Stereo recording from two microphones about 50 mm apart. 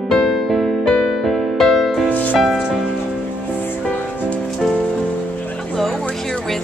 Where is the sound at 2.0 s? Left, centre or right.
Left.